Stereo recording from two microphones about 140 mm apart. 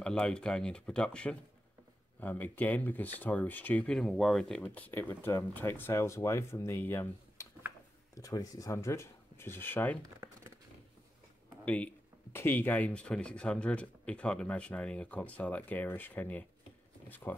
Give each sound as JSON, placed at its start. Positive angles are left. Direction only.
{"t": 0.0, "sound": "speech", "side_deg": 5}
{"t": 11.6, "sound": "speech", "side_deg": 10}